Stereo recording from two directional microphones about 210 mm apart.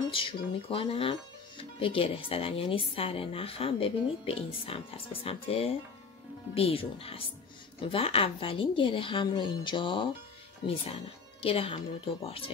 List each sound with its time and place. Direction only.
0.1 s speech: 25° left (ahead or behind)